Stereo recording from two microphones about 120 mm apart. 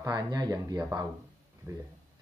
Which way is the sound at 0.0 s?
35° right (ahead or behind).